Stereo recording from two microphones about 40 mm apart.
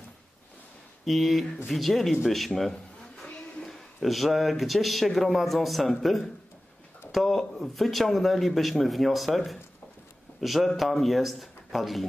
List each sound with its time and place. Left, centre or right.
1.0 s speech: centre